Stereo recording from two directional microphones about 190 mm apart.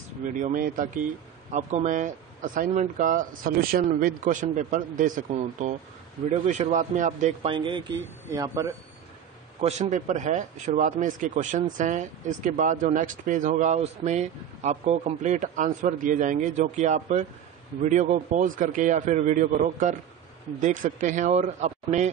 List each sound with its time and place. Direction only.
0.3 s speech: 45° right (ahead or behind); by 8.7 s 20° right (ahead or behind)
9.6 s speech: 35° right (ahead or behind)